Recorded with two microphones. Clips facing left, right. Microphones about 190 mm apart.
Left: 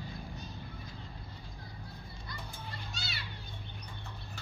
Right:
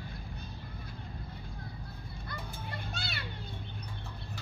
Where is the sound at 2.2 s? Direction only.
55° right (ahead or behind).